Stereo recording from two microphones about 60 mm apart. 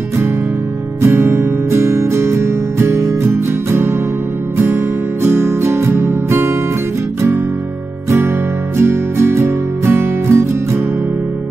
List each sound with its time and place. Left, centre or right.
1.0 s music: right
8.7 s music: right